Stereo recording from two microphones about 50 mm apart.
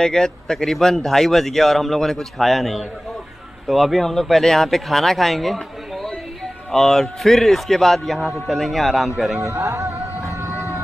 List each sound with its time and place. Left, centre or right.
0.0 s speech: centre
9.7 s music: right